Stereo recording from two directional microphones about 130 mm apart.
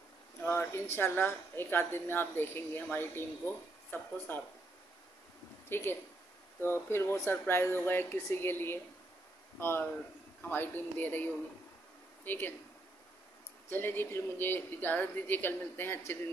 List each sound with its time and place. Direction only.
0.4 s a sound: 15° left (ahead or behind)
0.9 s a woman's voice: 15° left (ahead or behind)
5.7 s a woman's voice: 20° left (ahead or behind)
13.7 s a woman's voice: 15° left (ahead or behind)